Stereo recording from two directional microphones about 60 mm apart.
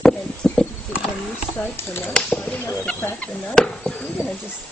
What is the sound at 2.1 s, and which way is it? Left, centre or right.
Speech, left.